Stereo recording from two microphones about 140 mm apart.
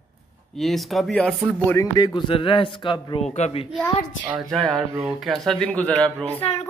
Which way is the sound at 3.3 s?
55° left (ahead or behind).